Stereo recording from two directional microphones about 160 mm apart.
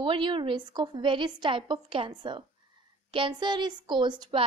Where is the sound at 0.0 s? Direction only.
30° right (ahead or behind).